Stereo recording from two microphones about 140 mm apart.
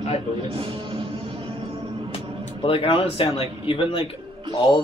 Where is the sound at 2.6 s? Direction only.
40° left (ahead or behind).